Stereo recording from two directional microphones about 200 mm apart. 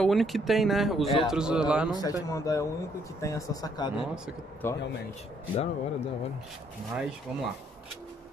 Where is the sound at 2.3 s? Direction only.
15° left (ahead or behind).